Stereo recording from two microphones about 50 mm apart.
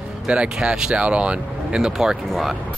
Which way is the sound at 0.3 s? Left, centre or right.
Centre.